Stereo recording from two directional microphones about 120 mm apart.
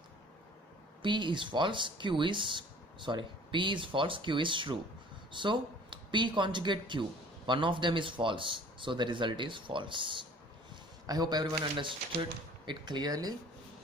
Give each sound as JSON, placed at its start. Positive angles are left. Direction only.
{"t": 1.0, "sound": "speech", "side_deg": -40}